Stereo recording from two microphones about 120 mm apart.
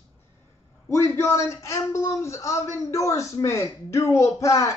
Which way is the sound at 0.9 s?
25° left (ahead or behind).